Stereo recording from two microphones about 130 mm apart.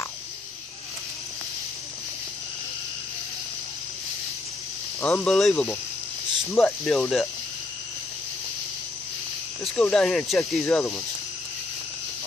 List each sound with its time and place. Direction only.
5.0 s speech: 10° left (ahead or behind)
9.8 s speech: 5° left (ahead or behind)
10.6 s speech: 20° left (ahead or behind)